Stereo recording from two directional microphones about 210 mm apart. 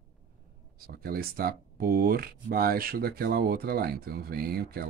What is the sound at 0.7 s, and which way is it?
Speech, 45° right (ahead or behind).